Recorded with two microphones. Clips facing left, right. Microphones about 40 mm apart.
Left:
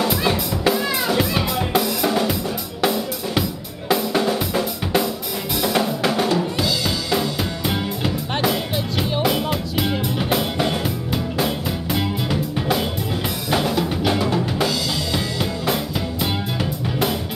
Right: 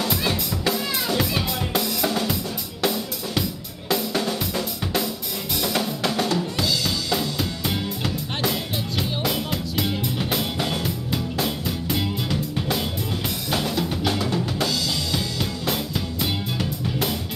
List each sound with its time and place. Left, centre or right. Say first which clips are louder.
0.1 s music: left 4 dB; centre
2.8 s drum kit: left 4 dB; centre
3.9 s drum: left 5 dB; centre
11.3 s music: left 3 dB; centre
13.5 s drum: left 5 dB; centre